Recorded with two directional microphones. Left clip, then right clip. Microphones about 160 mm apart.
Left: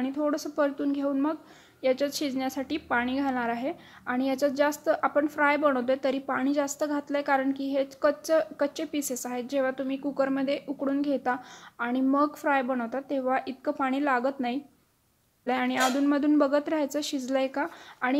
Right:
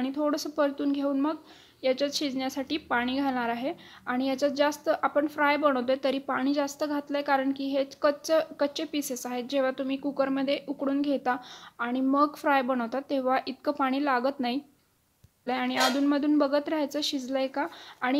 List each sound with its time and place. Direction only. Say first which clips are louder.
0.0 s a woman's voice: even; centre (ahead or behind)